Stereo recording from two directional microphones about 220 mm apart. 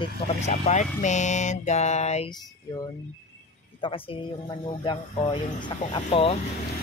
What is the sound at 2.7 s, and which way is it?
Speech, 15° left (ahead or behind).